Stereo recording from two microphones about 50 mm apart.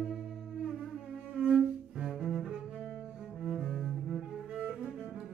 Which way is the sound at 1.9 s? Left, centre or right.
Centre.